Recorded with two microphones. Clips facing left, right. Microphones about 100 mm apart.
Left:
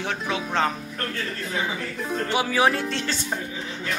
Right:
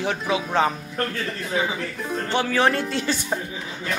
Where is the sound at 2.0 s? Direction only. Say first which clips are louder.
Even; centre (ahead or behind).